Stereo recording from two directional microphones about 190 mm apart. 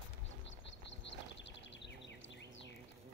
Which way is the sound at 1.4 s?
65° left (ahead or behind).